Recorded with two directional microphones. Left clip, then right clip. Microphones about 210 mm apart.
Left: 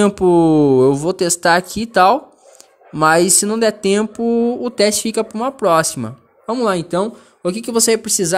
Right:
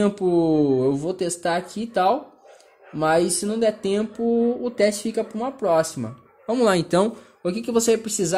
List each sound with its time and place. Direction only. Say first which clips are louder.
0.0 s speech: left 8 dB; 35° left (ahead or behind)
6.4 s speech: left 2 dB; 10° left (ahead or behind)
7.4 s speech: left 4 dB; 25° left (ahead or behind)